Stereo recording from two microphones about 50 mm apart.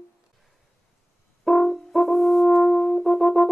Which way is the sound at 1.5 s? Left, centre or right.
Centre.